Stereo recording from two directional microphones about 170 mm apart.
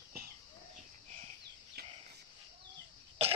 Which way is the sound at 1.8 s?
65° right (ahead or behind).